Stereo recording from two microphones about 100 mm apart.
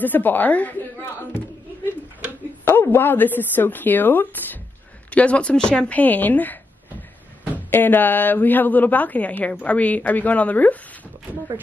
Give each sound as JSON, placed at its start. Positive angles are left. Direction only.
{"t": 0.0, "sound": "a woman's voice", "side_deg": 20}
{"t": 2.6, "sound": "a woman's voice", "side_deg": 25}